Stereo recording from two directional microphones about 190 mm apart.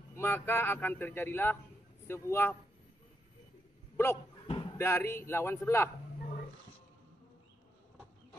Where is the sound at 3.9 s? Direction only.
15° left (ahead or behind).